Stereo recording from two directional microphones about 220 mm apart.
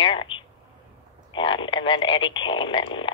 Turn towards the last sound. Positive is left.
turn(degrees=20)  # may be behind; listen again after turning